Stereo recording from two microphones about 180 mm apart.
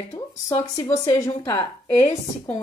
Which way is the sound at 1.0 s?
15° left (ahead or behind).